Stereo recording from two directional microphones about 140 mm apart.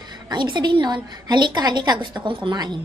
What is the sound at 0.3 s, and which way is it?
A woman's voice, 30° right (ahead or behind).